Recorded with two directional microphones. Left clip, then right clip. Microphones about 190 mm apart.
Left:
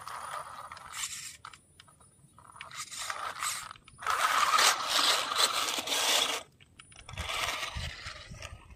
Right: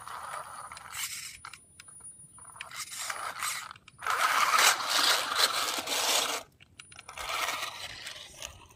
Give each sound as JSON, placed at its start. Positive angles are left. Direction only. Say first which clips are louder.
{"t": 0.0, "sound": "scrape", "louder": "even", "side_deg": 10}
{"t": 2.7, "sound": "mechanisms", "louder": "even", "side_deg": -20}
{"t": 7.1, "sound": "roar", "louder": "right 1 dB", "side_deg": -10}